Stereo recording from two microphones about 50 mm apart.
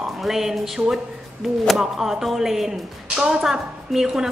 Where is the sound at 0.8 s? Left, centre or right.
Right.